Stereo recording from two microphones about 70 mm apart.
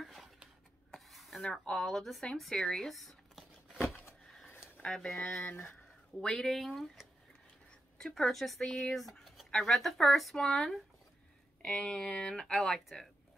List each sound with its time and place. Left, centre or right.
0.0 s a sound: centre
0.9 s speech: centre
4.9 s speech: centre
5.5 s speech: left
6.2 s speech: centre